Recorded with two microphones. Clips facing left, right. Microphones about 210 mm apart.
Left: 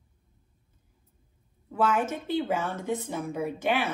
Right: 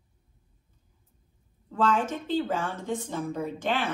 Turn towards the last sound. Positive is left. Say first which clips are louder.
# left 1 dB
turn(degrees=10)  # may be behind; listen again after turning